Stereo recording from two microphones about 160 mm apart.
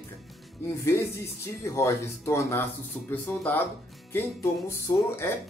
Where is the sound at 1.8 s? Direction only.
15° left (ahead or behind).